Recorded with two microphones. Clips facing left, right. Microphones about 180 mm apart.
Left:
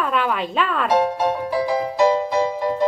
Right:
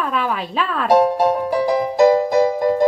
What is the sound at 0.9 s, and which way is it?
Music, 45° right (ahead or behind).